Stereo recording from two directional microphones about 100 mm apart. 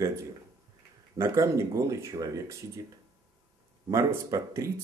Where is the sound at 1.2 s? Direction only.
30° right (ahead or behind).